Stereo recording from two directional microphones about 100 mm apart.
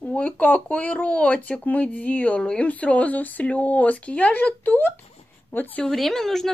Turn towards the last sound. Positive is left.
turn(degrees=0)  # may be behind; listen again after turning